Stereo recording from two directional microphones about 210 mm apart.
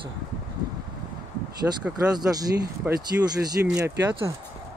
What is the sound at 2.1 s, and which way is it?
Speech, 15° right (ahead or behind).